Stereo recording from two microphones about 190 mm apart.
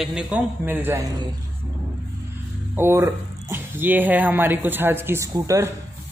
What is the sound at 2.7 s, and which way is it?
Speech, 10° right (ahead or behind).